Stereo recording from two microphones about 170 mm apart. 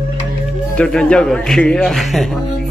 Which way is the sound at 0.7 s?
5° left (ahead or behind).